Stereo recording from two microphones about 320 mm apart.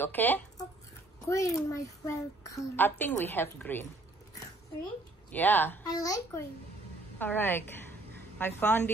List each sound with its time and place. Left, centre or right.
0.0 s a child's voice: centre
5.3 s a child's voice: centre